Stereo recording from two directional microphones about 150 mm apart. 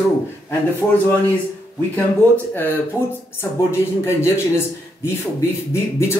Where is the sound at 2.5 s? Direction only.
15° left (ahead or behind).